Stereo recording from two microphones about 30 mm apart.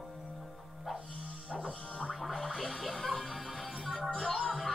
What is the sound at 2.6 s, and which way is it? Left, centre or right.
Music, centre.